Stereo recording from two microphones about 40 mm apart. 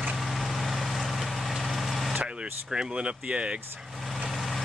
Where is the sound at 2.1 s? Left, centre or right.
Right.